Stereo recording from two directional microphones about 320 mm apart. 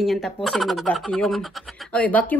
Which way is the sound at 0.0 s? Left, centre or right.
Centre.